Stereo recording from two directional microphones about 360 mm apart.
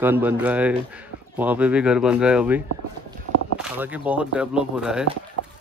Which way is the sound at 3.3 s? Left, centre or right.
Right.